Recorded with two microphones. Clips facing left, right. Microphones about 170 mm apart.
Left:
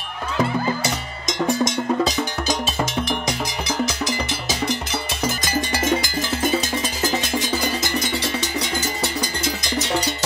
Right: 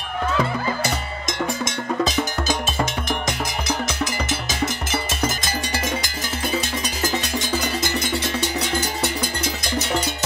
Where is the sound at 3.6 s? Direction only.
50° right (ahead or behind).